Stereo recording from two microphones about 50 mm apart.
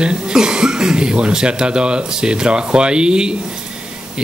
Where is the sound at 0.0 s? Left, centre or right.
Centre.